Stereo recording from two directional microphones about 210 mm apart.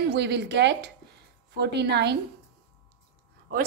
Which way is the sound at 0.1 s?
55° right (ahead or behind).